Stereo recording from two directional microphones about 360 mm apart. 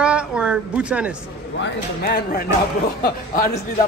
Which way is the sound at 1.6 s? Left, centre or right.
Left.